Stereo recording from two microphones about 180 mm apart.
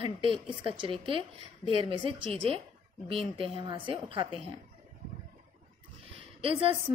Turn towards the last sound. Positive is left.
turn(degrees=-30)  # may be behind; listen again after turning